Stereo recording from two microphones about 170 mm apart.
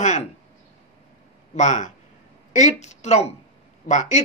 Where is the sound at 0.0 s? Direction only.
45° left (ahead or behind).